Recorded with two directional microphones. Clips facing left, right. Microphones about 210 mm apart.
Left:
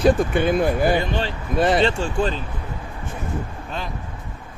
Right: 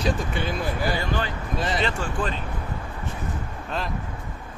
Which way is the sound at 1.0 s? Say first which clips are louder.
Left 3 dB; 25° left (ahead or behind).